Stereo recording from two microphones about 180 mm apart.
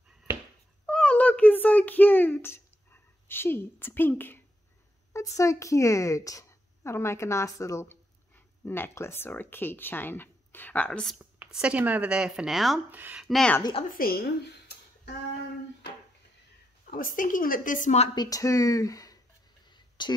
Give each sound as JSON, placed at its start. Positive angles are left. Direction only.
{"t": 0.8, "sound": "a sound", "side_deg": 5}
{"t": 5.1, "sound": "speech", "side_deg": 15}
{"t": 11.3, "sound": "speech", "side_deg": -5}
{"t": 13.6, "sound": "speech", "side_deg": 25}
{"t": 13.8, "sound": "a woman's voice", "side_deg": 55}
{"t": 16.9, "sound": "a woman's voice", "side_deg": 50}
{"t": 18.1, "sound": "speech", "side_deg": 20}
{"t": 19.7, "sound": "a sound", "side_deg": 25}